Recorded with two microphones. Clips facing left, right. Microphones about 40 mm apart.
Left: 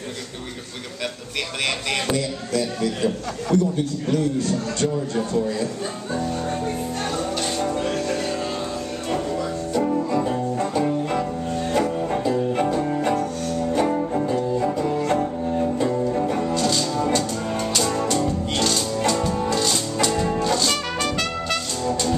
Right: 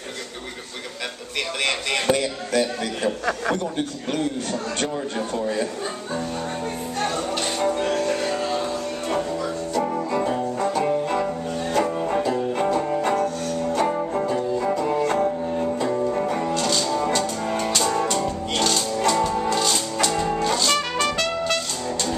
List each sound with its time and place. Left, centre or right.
2.0 s a man's voice: right
7.6 s music: centre
12.5 s music: centre
15.9 s music: right; by 21.5 s centre